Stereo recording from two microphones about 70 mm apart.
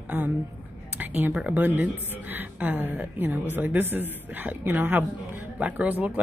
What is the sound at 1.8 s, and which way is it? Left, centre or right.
Speech, right.